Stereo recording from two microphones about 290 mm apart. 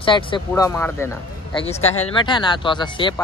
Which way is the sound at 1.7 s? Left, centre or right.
Left.